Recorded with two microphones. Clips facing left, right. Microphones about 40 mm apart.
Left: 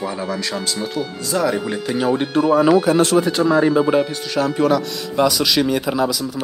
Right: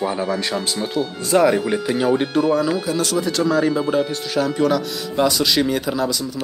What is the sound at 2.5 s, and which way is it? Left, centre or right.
Speech, left.